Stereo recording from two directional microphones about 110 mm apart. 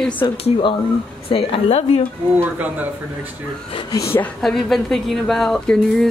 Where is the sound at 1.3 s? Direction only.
65° left (ahead or behind).